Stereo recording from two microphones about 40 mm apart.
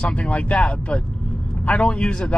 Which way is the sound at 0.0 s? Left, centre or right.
Left.